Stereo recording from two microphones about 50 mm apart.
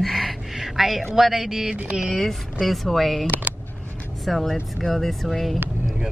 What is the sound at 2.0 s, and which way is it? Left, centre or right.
A woman's voice, centre.